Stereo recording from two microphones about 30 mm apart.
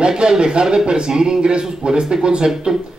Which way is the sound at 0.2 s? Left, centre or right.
Right.